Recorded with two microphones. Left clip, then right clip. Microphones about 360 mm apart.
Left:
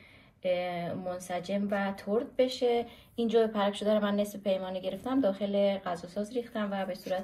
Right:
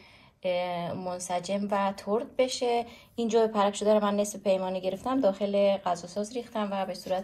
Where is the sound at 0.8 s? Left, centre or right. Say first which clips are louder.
Right 2 dB; right.